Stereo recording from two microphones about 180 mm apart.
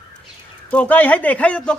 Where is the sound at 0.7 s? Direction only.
10° left (ahead or behind).